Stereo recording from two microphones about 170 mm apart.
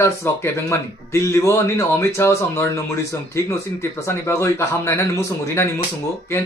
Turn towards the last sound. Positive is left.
turn(degrees=15)  # may be behind; listen again after turning